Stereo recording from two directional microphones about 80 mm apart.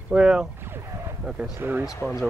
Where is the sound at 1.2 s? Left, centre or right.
Centre.